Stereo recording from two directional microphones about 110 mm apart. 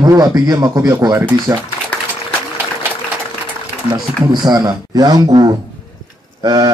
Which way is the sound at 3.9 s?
40° right (ahead or behind).